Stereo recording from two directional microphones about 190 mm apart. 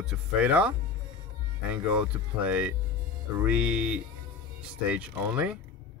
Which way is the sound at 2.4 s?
10° right (ahead or behind).